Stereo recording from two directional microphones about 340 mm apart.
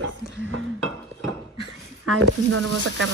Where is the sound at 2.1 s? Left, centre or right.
Right.